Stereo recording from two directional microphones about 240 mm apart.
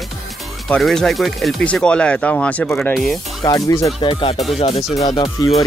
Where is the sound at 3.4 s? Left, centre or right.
Centre.